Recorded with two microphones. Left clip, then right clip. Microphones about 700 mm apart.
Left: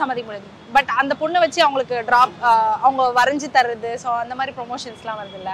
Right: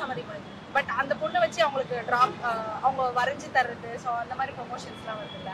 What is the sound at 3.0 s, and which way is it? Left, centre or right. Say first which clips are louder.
A woman's voice: left 10 dB; centre.